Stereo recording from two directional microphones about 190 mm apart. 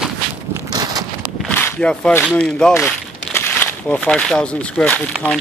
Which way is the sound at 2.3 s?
5° left (ahead or behind).